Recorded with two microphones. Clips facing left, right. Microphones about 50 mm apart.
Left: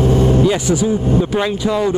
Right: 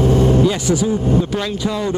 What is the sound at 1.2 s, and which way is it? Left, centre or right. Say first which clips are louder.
Speech: left 3 dB; centre.